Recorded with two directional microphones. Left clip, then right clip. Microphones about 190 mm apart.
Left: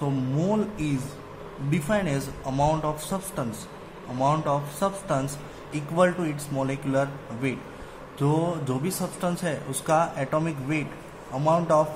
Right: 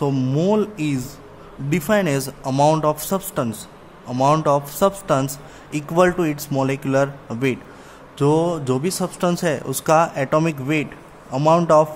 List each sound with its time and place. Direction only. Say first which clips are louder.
0.0 s speech: right 8 dB; 50° right (ahead or behind)